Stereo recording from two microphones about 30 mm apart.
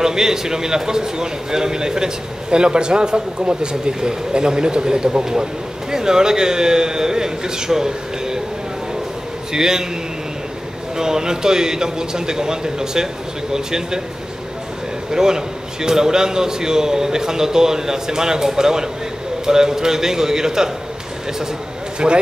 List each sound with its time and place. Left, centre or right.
0.0 s a man's voice: centre
9.5 s a man's voice: centre
11.0 s a man's voice: right
15.0 s a man's voice: right
22.0 s a man's voice: right